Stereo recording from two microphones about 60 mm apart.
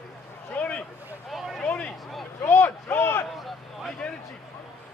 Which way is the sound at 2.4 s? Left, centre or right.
Left.